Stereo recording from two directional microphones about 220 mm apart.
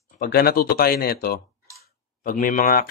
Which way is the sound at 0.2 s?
45° left (ahead or behind).